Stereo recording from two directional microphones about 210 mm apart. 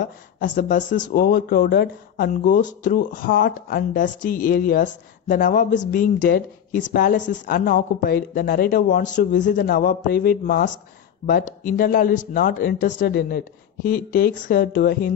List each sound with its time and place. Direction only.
0.0 s speech: 40° left (ahead or behind)